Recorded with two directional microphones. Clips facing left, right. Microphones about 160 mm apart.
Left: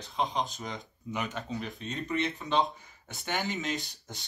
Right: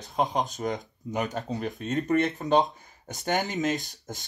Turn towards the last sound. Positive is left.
turn(degrees=-45)  # may be behind; listen again after turning